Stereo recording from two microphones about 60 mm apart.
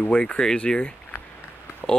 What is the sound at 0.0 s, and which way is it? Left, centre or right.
Speech, centre.